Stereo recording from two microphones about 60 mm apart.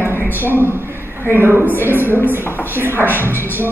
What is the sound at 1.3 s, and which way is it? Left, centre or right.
Speech, right.